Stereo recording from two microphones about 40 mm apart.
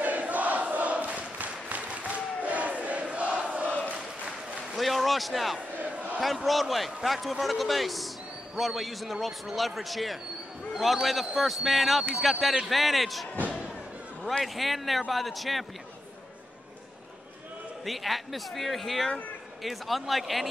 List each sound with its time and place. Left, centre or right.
0.0 s crowd: right
4.7 s a sound: centre
5.8 s battle cry: right
6.2 s speech: centre
14.4 s speech: centre
17.8 s speech: centre